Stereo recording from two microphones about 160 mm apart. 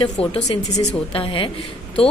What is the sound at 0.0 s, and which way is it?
A woman's voice, 35° left (ahead or behind).